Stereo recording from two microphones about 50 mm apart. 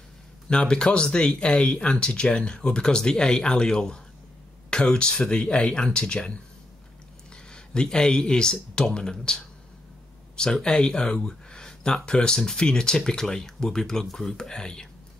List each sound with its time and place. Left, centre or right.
0.5 s speech: centre
7.5 s speech: centre